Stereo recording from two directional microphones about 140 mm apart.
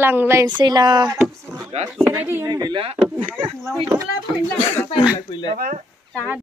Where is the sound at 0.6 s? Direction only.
30° right (ahead or behind).